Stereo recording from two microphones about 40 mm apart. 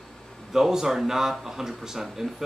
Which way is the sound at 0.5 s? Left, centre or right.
Centre.